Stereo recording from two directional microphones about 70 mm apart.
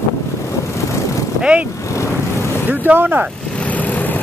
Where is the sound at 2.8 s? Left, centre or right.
Right.